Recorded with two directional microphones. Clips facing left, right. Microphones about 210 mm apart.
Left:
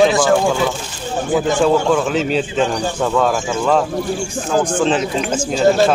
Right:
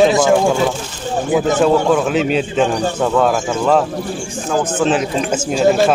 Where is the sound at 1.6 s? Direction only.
5° right (ahead or behind).